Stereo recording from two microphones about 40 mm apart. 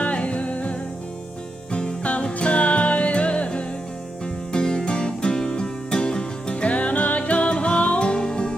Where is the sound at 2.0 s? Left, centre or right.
Left.